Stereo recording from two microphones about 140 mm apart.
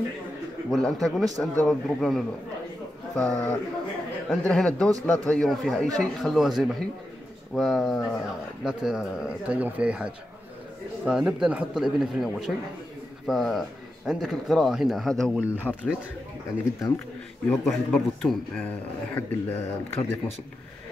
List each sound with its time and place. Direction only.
0.7 s speech: centre (ahead or behind)
17.5 s speech: 5° left (ahead or behind)
19.1 s speech: 15° left (ahead or behind)